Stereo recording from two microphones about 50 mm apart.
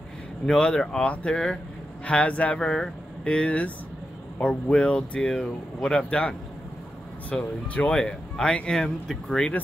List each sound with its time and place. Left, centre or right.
0.5 s speech: centre
1.0 s speech: left
1.3 s speech: centre
2.0 s speech: left; by 9.5 s centre